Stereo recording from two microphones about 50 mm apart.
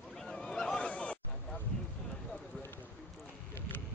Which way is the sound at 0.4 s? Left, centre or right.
Centre.